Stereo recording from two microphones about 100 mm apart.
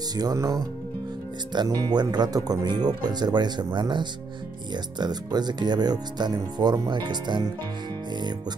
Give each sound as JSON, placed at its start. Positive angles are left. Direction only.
{"t": 0.1, "sound": "speech", "side_deg": -40}